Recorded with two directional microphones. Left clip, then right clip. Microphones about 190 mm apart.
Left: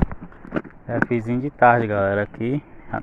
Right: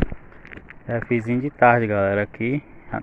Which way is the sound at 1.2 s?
15° right (ahead or behind).